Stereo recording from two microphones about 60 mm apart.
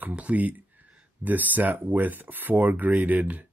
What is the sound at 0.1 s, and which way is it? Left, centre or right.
Speech, right.